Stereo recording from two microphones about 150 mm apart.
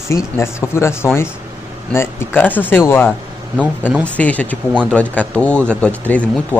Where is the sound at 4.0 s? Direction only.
10° left (ahead or behind).